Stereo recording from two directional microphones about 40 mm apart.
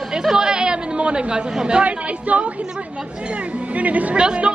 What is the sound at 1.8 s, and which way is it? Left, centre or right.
Speech, right.